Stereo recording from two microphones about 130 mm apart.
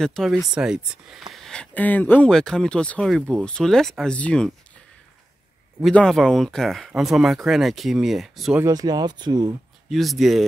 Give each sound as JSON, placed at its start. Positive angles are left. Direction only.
{"t": 0.0, "sound": "speech", "side_deg": 5}
{"t": 5.9, "sound": "speech", "side_deg": 5}
{"t": 8.6, "sound": "speech", "side_deg": -30}
{"t": 9.8, "sound": "speech", "side_deg": 0}